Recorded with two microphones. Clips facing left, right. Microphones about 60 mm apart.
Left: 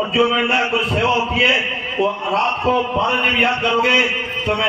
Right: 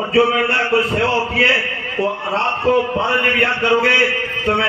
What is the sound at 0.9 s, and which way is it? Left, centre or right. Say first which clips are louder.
Speech: even; right.